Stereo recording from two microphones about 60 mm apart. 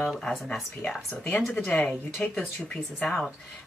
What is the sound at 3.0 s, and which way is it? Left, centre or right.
Speech, centre.